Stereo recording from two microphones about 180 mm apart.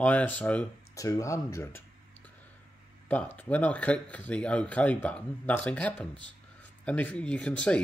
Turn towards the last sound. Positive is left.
turn(degrees=5)  # may be behind; listen again after turning